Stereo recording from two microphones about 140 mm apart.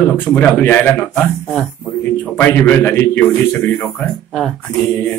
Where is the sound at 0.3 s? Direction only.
10° left (ahead or behind).